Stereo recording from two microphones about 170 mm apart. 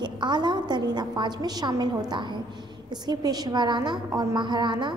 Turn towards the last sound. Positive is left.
turn(degrees=-25)  # may be behind; listen again after turning